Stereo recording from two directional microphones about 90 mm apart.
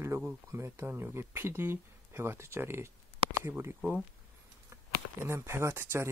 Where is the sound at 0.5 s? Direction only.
30° right (ahead or behind).